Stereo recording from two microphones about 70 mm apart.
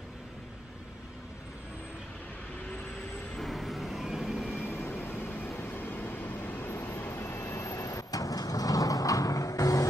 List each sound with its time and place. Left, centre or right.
3.3 s vehicle: centre
4.6 s vehicle: left
7.5 s vehicle: left